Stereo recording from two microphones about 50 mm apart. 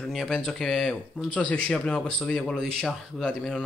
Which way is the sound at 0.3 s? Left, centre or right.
Centre.